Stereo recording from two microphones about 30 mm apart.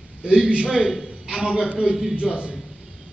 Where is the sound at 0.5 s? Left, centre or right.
Right.